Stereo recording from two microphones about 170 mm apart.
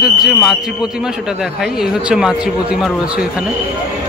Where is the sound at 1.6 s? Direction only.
5° right (ahead or behind).